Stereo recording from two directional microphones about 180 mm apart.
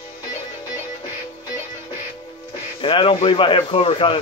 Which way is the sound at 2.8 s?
30° left (ahead or behind).